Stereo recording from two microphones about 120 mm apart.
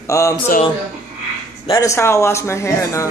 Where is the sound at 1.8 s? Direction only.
25° left (ahead or behind).